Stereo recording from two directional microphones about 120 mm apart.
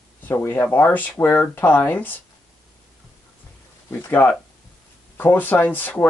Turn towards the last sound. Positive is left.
turn(degrees=15)  # may be behind; listen again after turning